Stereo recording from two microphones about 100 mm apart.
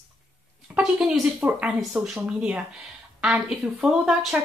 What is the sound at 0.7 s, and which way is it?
Speech, 5° right (ahead or behind).